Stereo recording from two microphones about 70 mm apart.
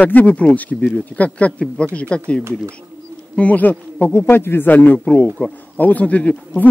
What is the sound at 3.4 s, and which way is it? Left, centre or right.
Speech, left.